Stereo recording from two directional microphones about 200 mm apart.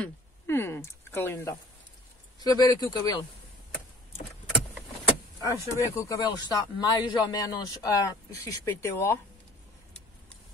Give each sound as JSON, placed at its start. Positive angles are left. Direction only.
{"t": 0.0, "sound": "a sound", "side_deg": 10}
{"t": 2.4, "sound": "speech", "side_deg": 20}
{"t": 5.7, "sound": "a man's voice", "side_deg": 15}